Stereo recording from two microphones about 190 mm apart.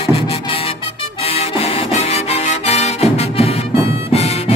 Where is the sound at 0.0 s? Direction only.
30° left (ahead or behind).